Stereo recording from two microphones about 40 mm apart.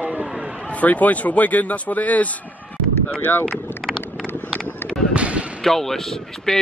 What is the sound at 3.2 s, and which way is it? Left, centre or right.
Speech, left.